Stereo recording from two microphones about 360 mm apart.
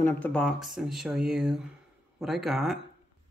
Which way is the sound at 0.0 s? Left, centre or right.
Centre.